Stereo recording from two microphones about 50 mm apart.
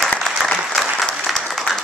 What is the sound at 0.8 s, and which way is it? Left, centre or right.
Applause, centre.